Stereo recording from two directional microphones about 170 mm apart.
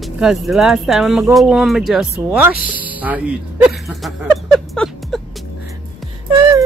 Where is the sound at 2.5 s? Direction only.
55° left (ahead or behind).